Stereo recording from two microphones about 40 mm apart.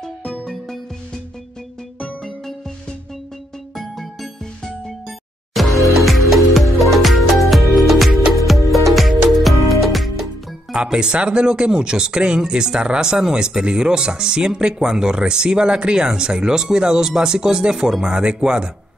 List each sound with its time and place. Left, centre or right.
0.0 s music: centre
3.7 s music: centre
10.8 s speech: right